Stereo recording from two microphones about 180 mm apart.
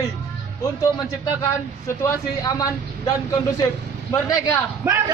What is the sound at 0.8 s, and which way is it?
A man's voice, 15° left (ahead or behind).